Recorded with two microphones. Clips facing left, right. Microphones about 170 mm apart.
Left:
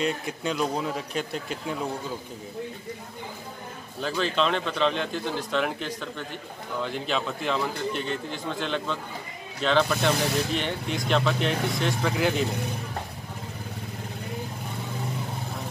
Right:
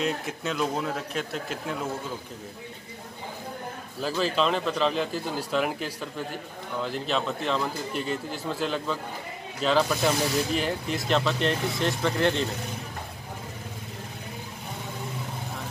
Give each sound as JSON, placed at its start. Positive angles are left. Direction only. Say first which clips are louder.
{"t": 0.0, "sound": "speech", "louder": "left 1 dB", "side_deg": 0}
{"t": 4.0, "sound": "speech", "louder": "even", "side_deg": -5}